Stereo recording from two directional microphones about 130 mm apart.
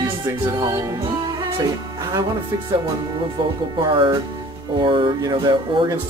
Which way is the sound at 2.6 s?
35° right (ahead or behind).